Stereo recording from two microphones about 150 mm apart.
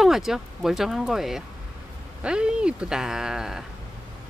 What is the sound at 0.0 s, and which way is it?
Speech, centre (ahead or behind).